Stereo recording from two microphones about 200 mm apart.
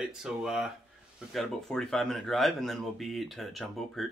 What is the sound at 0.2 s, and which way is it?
Speech, 5° right (ahead or behind).